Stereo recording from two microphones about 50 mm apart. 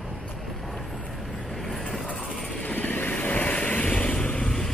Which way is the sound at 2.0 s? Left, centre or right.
Left.